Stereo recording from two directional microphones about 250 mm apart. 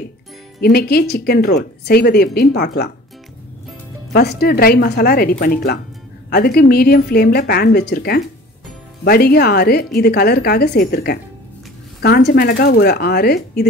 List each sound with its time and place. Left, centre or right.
0.6 s speech: left
4.1 s speech: left